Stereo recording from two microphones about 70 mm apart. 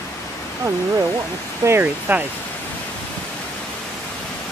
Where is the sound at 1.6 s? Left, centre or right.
Right.